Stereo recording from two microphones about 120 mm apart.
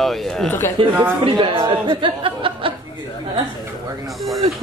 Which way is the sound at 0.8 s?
45° right (ahead or behind).